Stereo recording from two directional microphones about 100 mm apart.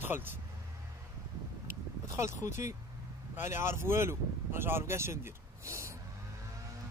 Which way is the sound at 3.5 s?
25° right (ahead or behind).